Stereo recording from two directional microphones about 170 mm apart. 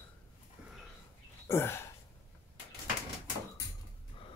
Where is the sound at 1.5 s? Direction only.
15° left (ahead or behind).